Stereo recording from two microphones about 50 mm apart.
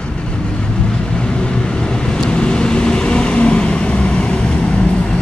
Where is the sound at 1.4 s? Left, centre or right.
Centre.